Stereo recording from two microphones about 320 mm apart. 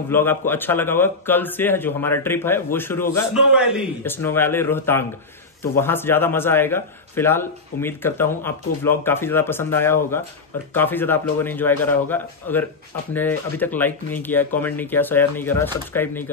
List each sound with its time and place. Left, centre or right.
0.1 s a man's voice: centre